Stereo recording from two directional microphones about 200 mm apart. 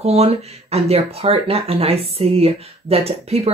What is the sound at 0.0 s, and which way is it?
Speech, 30° right (ahead or behind).